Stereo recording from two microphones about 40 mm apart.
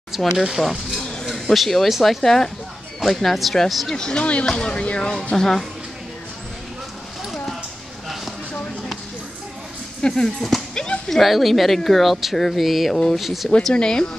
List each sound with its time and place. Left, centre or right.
0.4 s speech: centre
3.9 s speech: centre
4.2 s speech: left
4.5 s speech: left
5.3 s speech: centre
10.0 s speech: centre
10.7 s a sound: centre
11.1 s speech: centre
12.9 s speech: centre
13.2 s speech: centre
13.7 s speech: centre